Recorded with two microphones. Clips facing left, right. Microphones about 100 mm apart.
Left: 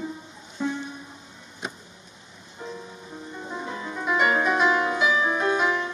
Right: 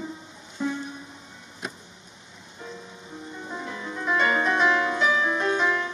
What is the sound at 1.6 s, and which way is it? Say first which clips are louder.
Vehicle: left 1 dB; centre (ahead or behind).